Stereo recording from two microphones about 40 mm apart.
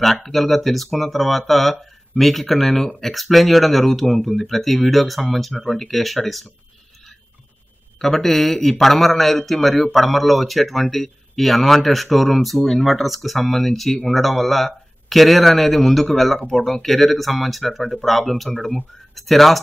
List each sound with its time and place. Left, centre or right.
0.0 s speech: centre
8.0 s speech: centre